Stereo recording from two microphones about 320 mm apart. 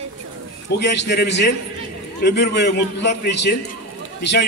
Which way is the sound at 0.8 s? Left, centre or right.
Left.